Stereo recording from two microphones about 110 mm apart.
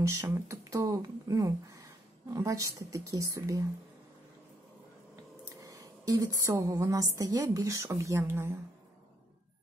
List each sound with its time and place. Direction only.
0.0 s speech: 25° right (ahead or behind)
5.4 s a woman's voice: 30° right (ahead or behind)